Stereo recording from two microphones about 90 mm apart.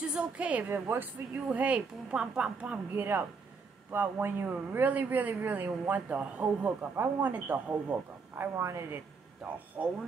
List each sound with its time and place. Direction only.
0.0 s a woman's voice: 10° right (ahead or behind); by 9.0 s 30° right (ahead or behind)
9.4 s a woman's voice: 5° right (ahead or behind)